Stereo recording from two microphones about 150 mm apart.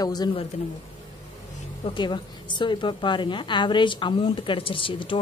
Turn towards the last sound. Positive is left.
turn(degrees=35)  # may be behind; listen again after turning